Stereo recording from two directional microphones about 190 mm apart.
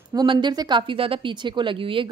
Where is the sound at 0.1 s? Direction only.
20° right (ahead or behind).